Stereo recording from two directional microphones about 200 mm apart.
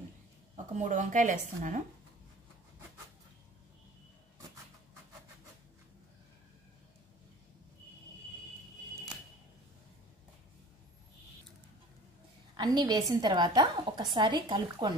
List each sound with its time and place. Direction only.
0.7 s speech: 35° right (ahead or behind)
12.5 s a woman's voice: 20° right (ahead or behind)